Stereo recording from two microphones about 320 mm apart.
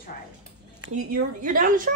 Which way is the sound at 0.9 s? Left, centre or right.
Right.